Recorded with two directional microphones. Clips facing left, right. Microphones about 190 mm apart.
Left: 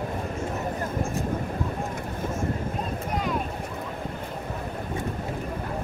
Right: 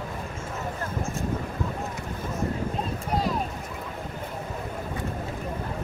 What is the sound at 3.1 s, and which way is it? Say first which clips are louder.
Boat: right 2 dB; 35° right (ahead or behind).